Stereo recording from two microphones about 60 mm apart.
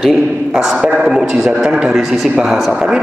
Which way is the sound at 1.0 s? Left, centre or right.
Centre.